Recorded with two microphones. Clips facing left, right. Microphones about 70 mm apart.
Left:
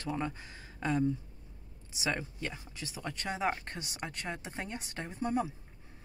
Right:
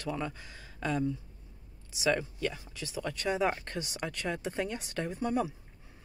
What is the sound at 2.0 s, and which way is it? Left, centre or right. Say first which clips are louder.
Speech: right 5 dB; centre.